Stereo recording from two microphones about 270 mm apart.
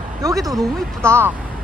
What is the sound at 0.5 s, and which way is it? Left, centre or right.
Speech, centre.